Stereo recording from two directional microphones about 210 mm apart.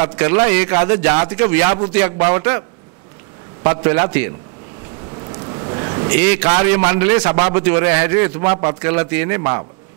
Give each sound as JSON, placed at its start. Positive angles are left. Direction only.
{"t": 0.0, "sound": "a man's voice", "side_deg": -15}
{"t": 3.6, "sound": "a man's voice", "side_deg": -20}